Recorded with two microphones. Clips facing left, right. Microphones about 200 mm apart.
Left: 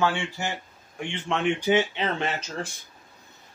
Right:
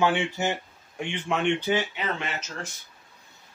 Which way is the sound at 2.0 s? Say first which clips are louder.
Left 3 dB; 30° left (ahead or behind).